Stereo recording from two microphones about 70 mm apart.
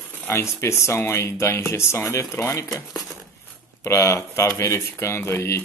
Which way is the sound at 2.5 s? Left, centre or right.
Left.